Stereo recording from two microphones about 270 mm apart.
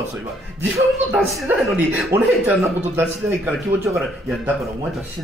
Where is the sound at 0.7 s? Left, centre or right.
Centre.